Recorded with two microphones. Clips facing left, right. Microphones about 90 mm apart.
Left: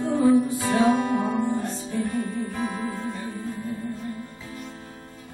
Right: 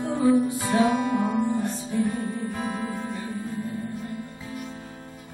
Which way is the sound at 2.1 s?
20° right (ahead or behind).